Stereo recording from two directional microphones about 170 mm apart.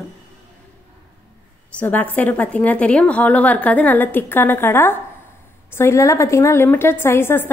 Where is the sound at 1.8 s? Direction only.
10° left (ahead or behind).